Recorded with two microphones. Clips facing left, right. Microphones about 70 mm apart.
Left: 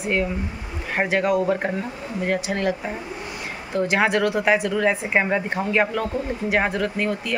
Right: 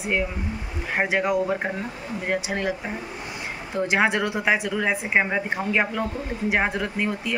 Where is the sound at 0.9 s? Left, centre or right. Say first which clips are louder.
Left 2 dB; centre.